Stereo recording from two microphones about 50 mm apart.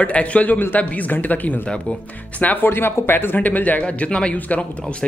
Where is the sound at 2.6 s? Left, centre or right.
Left.